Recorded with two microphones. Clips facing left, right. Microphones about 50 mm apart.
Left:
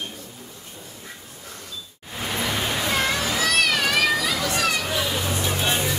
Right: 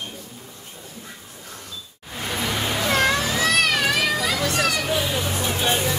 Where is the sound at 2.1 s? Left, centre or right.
Centre.